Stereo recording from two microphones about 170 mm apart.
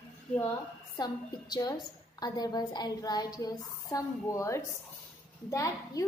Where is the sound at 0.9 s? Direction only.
25° left (ahead or behind).